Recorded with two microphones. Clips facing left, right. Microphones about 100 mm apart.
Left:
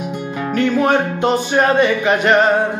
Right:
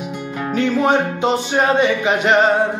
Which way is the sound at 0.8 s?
20° right (ahead or behind).